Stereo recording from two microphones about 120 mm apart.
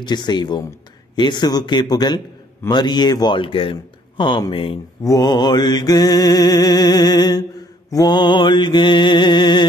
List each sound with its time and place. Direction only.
0.0 s mantra: 35° left (ahead or behind)
4.2 s speech: 40° left (ahead or behind)
5.0 s mantra: 35° left (ahead or behind)